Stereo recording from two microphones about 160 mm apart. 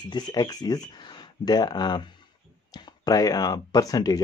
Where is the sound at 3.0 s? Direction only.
25° left (ahead or behind).